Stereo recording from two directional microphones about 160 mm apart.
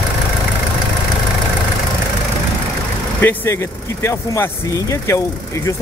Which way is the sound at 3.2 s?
15° left (ahead or behind).